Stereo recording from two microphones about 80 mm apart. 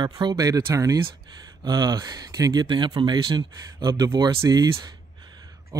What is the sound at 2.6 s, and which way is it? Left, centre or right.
Speech, right.